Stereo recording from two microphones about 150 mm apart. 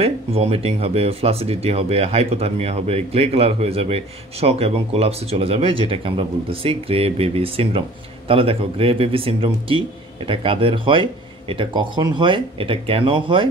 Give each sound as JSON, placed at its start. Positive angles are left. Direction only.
{"t": 0.0, "sound": "speech", "side_deg": -40}